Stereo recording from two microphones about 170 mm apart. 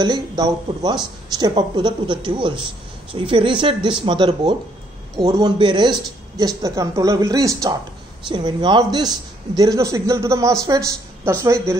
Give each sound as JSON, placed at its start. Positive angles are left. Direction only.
{"t": 0.0, "sound": "a woman's voice", "side_deg": -25}